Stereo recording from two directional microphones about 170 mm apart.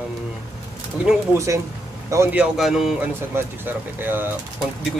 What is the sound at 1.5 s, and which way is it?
Speech, 20° right (ahead or behind).